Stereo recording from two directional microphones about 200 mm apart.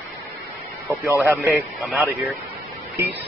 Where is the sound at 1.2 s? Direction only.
Centre (ahead or behind).